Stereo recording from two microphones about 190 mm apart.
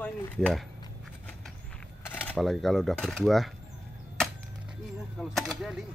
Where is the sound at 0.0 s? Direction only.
Centre (ahead or behind).